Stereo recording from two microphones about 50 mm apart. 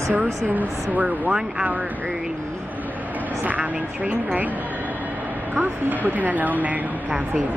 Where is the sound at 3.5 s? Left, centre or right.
Right.